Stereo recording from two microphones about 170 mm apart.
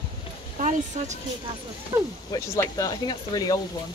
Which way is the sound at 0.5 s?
45° right (ahead or behind).